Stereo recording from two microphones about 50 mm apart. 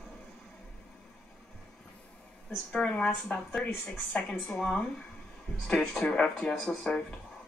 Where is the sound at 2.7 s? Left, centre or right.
Left.